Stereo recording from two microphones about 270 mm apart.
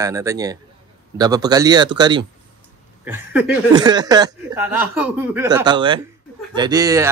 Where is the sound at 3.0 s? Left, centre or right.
Centre.